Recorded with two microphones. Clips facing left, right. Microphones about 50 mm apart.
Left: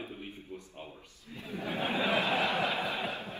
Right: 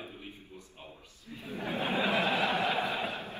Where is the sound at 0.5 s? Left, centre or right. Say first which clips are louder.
Left 5 dB; left.